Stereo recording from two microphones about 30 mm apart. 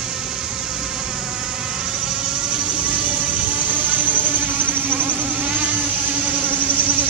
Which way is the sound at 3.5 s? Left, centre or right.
Right.